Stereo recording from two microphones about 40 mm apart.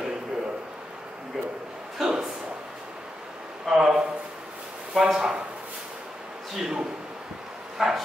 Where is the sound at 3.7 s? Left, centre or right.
Centre.